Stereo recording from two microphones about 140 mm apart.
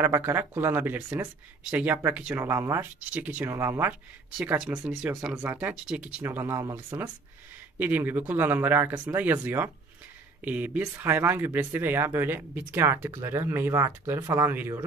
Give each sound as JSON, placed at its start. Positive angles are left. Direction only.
{"t": 0.0, "sound": "speech", "side_deg": -20}